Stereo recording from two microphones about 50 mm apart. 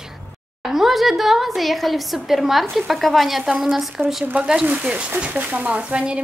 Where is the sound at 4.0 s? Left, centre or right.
Right.